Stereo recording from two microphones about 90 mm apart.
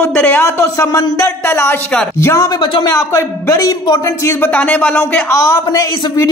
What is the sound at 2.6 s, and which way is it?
Speech, 60° left (ahead or behind).